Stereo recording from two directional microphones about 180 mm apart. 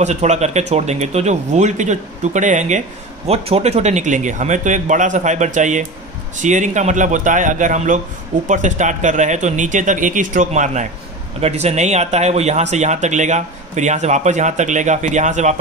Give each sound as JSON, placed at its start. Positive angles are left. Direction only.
{"t": 0.0, "sound": "speech", "side_deg": -40}